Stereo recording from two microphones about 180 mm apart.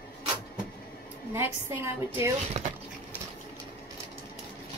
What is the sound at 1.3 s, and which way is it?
Speech, 15° right (ahead or behind).